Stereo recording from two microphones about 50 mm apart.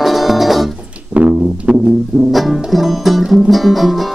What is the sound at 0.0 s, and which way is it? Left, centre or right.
Music, centre.